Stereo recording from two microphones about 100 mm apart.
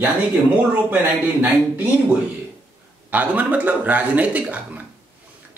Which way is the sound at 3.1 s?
15° right (ahead or behind).